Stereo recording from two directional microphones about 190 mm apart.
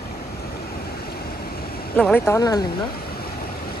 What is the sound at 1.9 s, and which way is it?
Speech, 5° left (ahead or behind).